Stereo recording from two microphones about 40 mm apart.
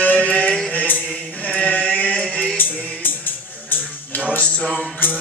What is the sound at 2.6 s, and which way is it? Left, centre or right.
Music, left.